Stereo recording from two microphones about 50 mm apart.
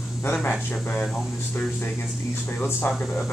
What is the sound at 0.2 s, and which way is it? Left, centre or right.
Speech, left.